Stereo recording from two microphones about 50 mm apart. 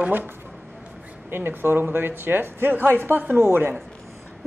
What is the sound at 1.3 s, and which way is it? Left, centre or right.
Speech, right.